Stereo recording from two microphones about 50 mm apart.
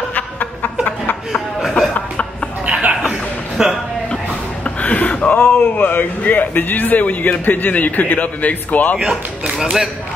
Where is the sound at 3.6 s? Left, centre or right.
Centre.